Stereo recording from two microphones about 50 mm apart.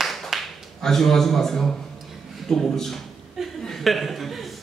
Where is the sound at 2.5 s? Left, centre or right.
Centre.